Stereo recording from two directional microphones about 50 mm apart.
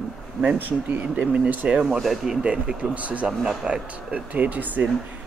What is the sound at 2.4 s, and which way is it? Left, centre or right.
A man's voice, right.